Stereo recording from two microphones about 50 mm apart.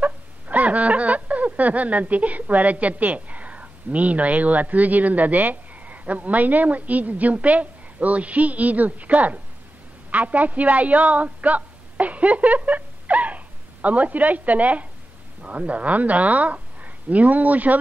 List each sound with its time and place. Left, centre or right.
0.0 s a woman's voice: right